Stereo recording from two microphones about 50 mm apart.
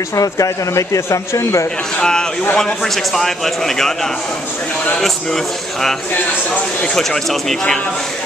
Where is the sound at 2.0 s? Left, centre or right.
Centre.